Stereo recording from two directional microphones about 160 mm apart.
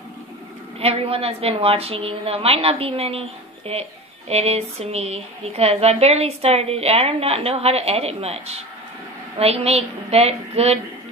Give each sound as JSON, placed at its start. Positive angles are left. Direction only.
{"t": 0.7, "sound": "a woman's voice", "side_deg": -40}